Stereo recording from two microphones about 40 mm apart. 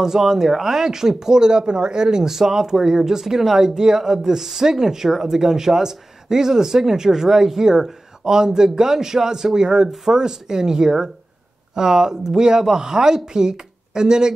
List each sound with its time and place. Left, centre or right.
0.0 s speech: centre